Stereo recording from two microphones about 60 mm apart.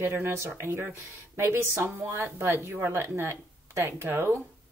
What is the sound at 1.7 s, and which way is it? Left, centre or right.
A woman's voice, right.